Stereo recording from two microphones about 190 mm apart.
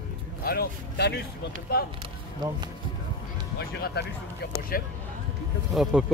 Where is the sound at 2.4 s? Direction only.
20° right (ahead or behind).